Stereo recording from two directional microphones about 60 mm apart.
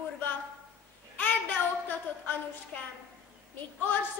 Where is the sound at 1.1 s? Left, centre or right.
Left.